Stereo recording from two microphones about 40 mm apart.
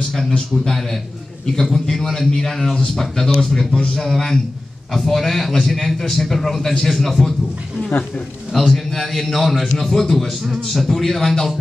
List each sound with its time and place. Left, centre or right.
1.4 s a man's voice: centre
8.5 s a man's voice: centre